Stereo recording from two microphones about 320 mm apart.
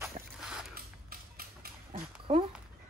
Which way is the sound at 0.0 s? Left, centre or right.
Centre.